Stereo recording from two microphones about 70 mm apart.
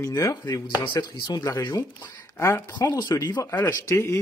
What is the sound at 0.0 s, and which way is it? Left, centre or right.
Speech, left.